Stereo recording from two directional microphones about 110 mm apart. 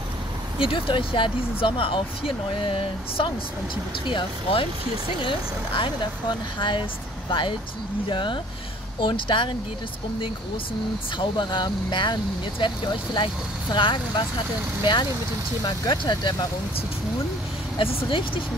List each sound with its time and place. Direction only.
0.6 s speech: 55° left (ahead or behind)
11.1 s speech: 45° left (ahead or behind)
15.6 s speech: 40° left (ahead or behind)
17.7 s speech: 55° left (ahead or behind)